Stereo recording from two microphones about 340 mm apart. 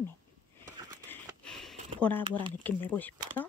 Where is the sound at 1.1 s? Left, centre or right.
Centre.